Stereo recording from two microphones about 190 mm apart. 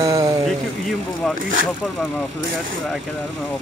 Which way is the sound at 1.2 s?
5° left (ahead or behind).